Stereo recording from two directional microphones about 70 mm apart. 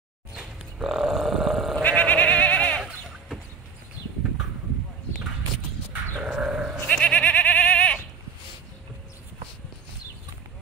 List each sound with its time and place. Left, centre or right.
0.3 s a sound: centre
1.8 s bleat: left
6.2 s goat: centre
6.9 s goat: left